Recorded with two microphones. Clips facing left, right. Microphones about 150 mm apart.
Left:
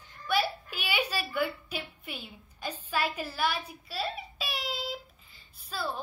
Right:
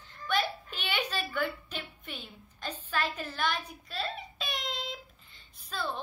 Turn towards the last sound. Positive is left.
turn(degrees=5)  # may be behind; listen again after turning